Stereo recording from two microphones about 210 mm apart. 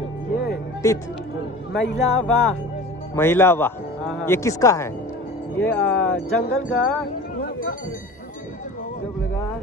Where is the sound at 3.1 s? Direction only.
10° left (ahead or behind).